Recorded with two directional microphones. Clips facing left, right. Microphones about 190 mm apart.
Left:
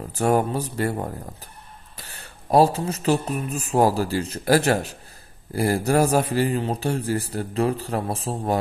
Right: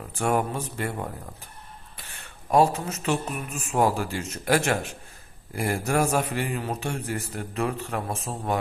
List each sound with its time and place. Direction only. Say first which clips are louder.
0.1 s a man's voice: left 4 dB; 35° left (ahead or behind)